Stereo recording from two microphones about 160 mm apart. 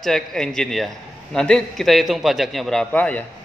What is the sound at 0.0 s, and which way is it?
A man's voice, centre (ahead or behind).